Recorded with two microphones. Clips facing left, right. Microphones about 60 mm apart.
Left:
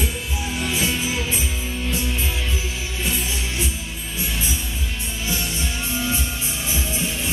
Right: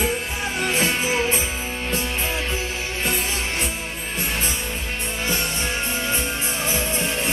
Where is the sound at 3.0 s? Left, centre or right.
Right.